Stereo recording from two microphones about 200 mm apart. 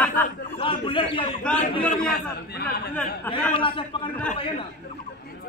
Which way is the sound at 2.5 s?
55° left (ahead or behind).